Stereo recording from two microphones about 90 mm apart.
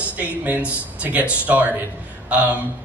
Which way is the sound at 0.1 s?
20° right (ahead or behind).